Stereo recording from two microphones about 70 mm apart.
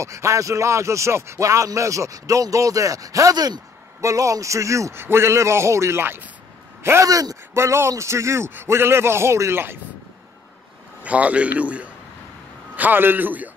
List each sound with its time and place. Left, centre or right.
0.0 s speech: right
4.0 s speech: right
4.9 s a man's voice: right
6.8 s speech: right
7.1 s speech: right
7.5 s a man's voice: right
11.0 s a man's voice: right